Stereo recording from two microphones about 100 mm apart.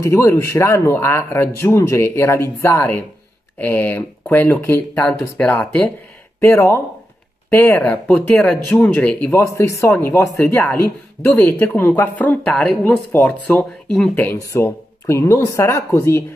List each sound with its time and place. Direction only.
0.0 s speech: 30° left (ahead or behind)
5.6 s speech: 10° left (ahead or behind)
6.4 s speech: 25° left (ahead or behind)
9.3 s speech: 30° left (ahead or behind)